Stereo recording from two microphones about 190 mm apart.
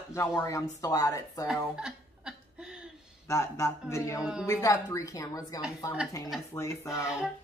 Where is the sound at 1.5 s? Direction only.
5° right (ahead or behind).